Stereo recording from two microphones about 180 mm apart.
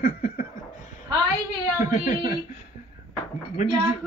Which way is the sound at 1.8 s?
45° left (ahead or behind).